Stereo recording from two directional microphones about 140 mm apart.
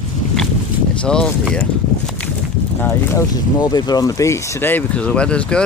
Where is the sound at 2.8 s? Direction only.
15° left (ahead or behind).